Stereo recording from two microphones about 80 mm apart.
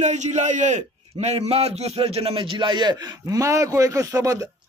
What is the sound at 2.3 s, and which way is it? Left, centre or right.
A man's voice, right.